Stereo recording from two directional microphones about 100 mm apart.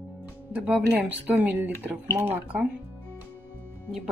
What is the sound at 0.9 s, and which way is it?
Speech, 15° right (ahead or behind).